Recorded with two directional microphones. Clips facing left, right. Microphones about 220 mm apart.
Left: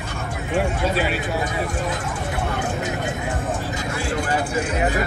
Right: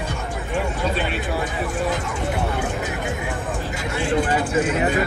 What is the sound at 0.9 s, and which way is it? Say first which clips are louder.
Speech: left 2 dB; 5° left (ahead or behind).